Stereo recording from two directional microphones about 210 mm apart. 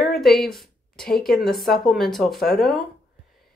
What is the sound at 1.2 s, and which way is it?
Speech, centre (ahead or behind).